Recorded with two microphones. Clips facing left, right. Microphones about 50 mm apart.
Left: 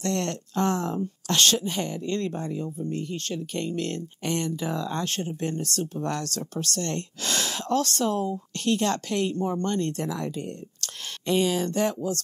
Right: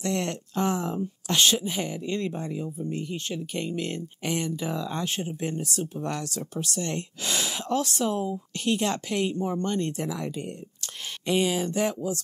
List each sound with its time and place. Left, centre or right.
0.0 s speech: centre
6.5 s speech: centre